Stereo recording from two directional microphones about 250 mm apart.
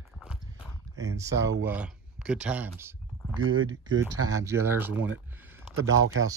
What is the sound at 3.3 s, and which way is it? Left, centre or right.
Speech, right.